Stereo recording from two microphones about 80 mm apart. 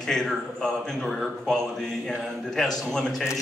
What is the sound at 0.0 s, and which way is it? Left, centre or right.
A man's voice, centre.